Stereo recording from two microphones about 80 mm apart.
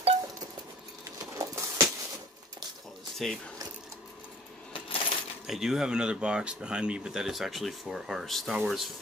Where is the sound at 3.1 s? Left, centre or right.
Centre.